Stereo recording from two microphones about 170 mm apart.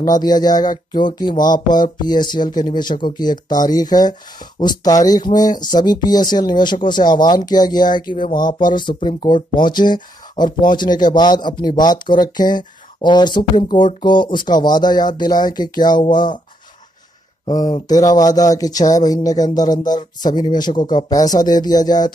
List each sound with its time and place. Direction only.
0.0 s speech: 20° left (ahead or behind)
17.5 s speech: 25° left (ahead or behind)